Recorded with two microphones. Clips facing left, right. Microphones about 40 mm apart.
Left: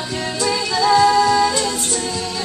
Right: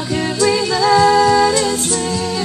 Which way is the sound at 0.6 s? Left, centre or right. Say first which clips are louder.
Left 1 dB; centre.